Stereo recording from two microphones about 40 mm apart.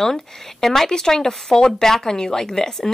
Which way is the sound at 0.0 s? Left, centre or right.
Centre.